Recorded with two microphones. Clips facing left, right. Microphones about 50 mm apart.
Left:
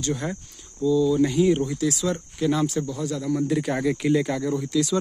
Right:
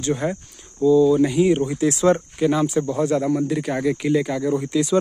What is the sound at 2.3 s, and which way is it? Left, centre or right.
Speech, centre.